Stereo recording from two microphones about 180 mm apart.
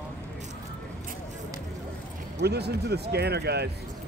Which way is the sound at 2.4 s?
65° right (ahead or behind).